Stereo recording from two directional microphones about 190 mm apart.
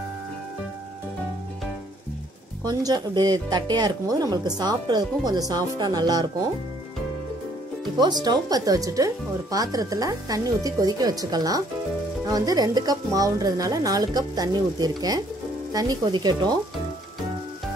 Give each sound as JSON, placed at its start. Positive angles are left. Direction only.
{"t": 2.6, "sound": "speech", "side_deg": -20}
{"t": 7.8, "sound": "speech", "side_deg": -20}